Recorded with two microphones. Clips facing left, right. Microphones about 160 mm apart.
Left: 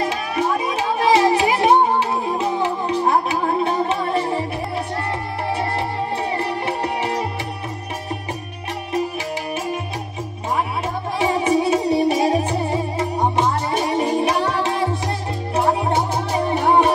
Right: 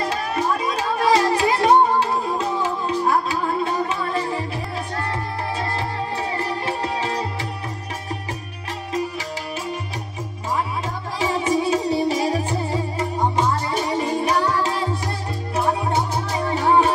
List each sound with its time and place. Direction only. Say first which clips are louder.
0.7 s music: left 1 dB; 15° left (ahead or behind)
6.3 s music: left 2 dB; 20° left (ahead or behind)
11.1 s music: left 3 dB; 20° left (ahead or behind)